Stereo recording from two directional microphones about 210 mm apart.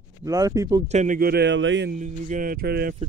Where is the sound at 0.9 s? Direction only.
35° right (ahead or behind); by 1.9 s 60° right (ahead or behind).